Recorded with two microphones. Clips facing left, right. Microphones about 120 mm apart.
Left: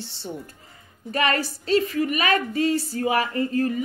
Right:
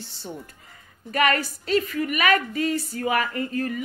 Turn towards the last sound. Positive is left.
turn(degrees=30)  # may be behind; listen again after turning